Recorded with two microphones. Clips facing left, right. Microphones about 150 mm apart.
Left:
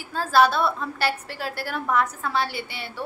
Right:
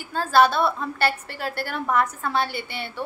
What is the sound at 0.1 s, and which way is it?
A woman's voice, centre (ahead or behind).